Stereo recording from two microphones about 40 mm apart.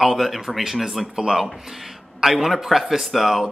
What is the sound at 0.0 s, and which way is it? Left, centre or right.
Speech, centre.